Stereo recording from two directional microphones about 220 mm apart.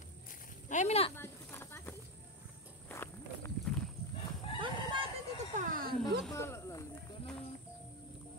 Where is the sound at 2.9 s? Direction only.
10° left (ahead or behind).